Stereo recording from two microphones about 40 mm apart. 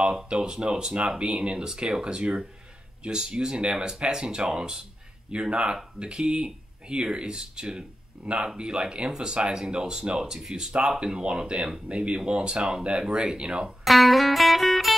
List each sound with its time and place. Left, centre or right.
0.3 s speech: right
8.2 s speech: centre
8.5 s speech: right
13.8 s music: centre